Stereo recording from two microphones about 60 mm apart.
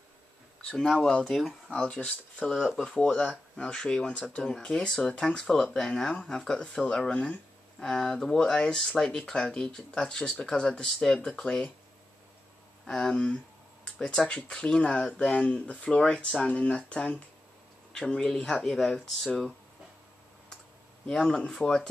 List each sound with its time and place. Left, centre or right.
0.6 s speech: centre
1.7 s speech: centre
3.6 s speech: centre
12.8 s speech: centre
21.1 s speech: centre